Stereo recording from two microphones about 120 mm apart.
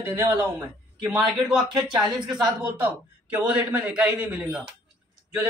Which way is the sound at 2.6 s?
15° right (ahead or behind).